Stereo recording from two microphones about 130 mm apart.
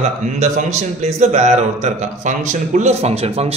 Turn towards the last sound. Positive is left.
turn(degrees=-50)  # may be behind; listen again after turning